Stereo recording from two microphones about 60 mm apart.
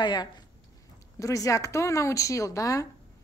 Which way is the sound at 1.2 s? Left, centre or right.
Left.